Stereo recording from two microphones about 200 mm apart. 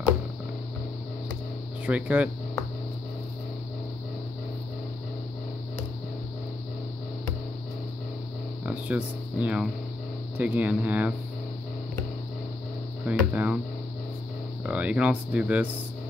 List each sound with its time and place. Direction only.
1.9 s speech: 5° right (ahead or behind)
8.6 s speech: 5° right (ahead or behind)
13.0 s speech: 5° right (ahead or behind)
14.7 s speech: 5° right (ahead or behind)